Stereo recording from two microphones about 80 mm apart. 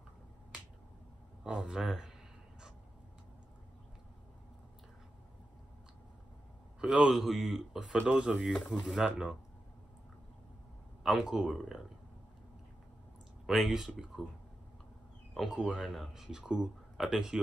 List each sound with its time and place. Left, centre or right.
1.4 s speech: centre
6.8 s speech: centre
8.0 s speech: centre
8.5 s speech: centre
8.9 s speech: centre
11.1 s speech: centre
13.5 s speech: centre
15.3 s speech: centre